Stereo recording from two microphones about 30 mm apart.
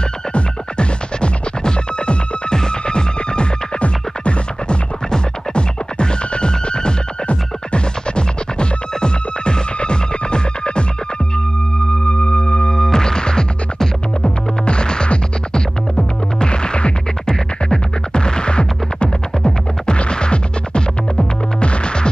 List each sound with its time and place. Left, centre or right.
0.3 s music: left
3.8 s music: left
12.1 s music: left
12.7 s music: left